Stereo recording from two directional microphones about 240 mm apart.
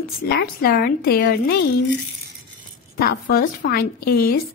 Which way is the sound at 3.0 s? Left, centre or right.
Left.